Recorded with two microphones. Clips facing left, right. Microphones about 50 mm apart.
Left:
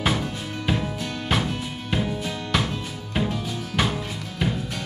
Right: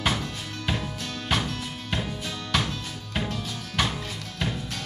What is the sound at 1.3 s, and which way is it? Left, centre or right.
Music, centre.